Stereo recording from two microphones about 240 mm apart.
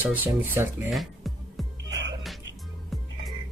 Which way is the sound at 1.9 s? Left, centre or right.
Right.